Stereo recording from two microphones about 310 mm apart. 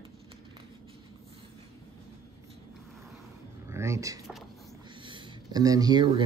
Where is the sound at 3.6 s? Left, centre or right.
Centre.